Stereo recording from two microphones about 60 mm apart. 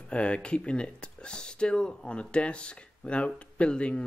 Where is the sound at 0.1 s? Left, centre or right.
Centre.